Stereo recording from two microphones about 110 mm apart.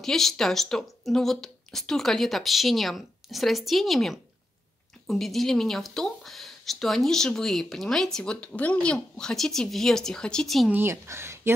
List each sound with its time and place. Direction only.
0.0 s speech: 5° left (ahead or behind)
10.7 s speech: 20° right (ahead or behind)